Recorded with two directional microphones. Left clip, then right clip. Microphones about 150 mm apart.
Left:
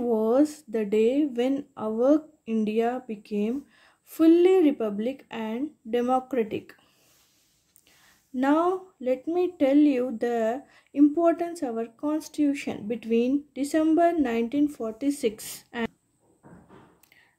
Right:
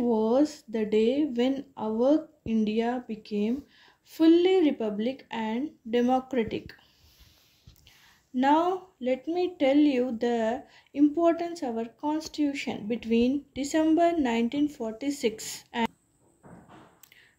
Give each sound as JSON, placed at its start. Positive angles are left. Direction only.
{"t": 0.1, "sound": "speech", "side_deg": 55}
{"t": 8.4, "sound": "speech", "side_deg": 45}